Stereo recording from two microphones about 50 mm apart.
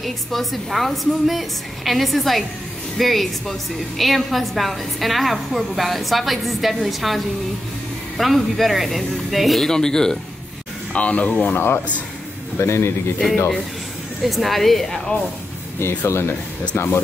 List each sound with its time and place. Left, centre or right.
0.0 s a woman's voice: centre
8.4 s a woman's voice: centre
9.7 s speech: centre
10.9 s speech: left
11.5 s speech: left
12.5 s a man's voice: left
14.2 s a woman's voice: centre
16.1 s a man's voice: left